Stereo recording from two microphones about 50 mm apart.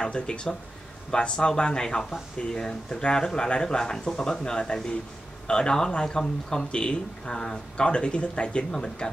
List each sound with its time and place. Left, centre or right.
0.0 s speech: centre